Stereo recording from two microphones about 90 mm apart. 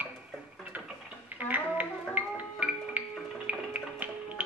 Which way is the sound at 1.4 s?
15° right (ahead or behind).